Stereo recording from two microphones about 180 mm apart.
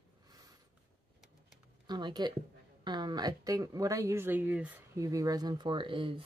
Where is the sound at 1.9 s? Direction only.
25° right (ahead or behind).